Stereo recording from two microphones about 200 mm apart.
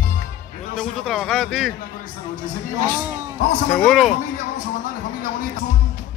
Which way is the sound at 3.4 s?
40° left (ahead or behind).